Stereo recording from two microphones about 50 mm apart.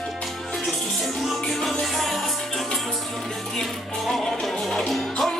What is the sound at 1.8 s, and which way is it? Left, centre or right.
Music, centre.